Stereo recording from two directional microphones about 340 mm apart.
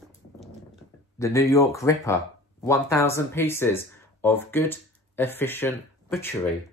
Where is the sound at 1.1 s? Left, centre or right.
Centre.